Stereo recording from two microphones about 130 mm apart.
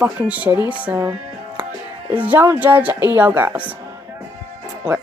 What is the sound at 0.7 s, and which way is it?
Music, 10° right (ahead or behind).